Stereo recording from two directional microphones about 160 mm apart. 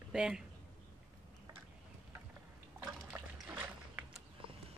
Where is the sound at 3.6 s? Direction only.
5° right (ahead or behind).